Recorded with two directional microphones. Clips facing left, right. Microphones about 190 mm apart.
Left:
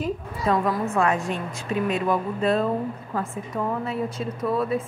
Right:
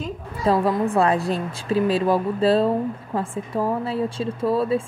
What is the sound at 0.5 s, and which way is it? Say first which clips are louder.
A woman's voice: right 4 dB; 30° right (ahead or behind).